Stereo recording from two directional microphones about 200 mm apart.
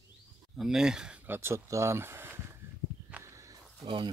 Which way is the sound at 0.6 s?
5° right (ahead or behind).